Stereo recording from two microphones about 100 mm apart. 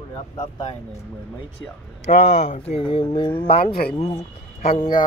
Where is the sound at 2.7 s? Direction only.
65° left (ahead or behind).